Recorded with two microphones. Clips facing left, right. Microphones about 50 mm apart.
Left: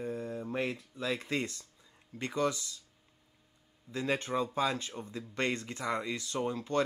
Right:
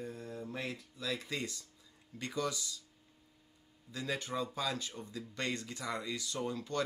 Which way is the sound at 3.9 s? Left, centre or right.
Left.